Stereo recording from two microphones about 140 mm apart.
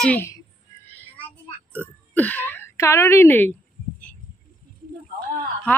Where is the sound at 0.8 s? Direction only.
15° left (ahead or behind).